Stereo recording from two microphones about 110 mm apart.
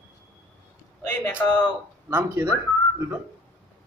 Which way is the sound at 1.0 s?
15° left (ahead or behind).